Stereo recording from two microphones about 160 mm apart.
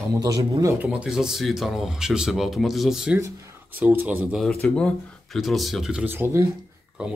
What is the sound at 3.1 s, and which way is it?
Speech, 20° right (ahead or behind).